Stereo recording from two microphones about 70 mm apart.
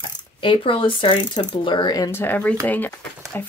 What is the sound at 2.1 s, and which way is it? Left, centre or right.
Speech, left.